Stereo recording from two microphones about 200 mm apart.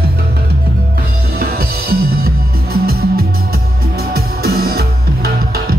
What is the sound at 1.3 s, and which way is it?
Music, 50° right (ahead or behind).